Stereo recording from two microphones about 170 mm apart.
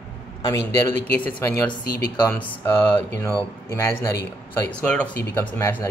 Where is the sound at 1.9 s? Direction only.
65° left (ahead or behind).